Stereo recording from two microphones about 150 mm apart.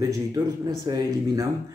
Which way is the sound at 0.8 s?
25° right (ahead or behind).